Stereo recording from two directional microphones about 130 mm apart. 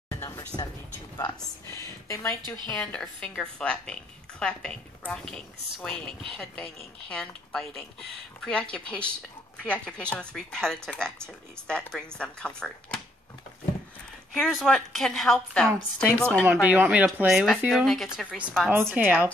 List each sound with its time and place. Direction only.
0.1 s a sound: 20° left (ahead or behind)
2.0 s a woman's voice: 25° left (ahead or behind)
2.7 s a woman's voice: 5° left (ahead or behind)
12.2 s a woman's voice: 5° left (ahead or behind)
14.3 s speech: 5° left (ahead or behind)
16.1 s speech: 10° right (ahead or behind)
18.7 s speech: 15° right (ahead or behind)